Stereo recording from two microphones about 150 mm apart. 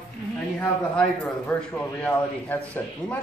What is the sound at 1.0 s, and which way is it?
A man's voice, 10° left (ahead or behind).